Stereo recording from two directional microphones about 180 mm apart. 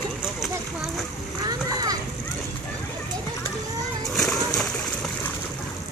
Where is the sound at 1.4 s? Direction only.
20° right (ahead or behind).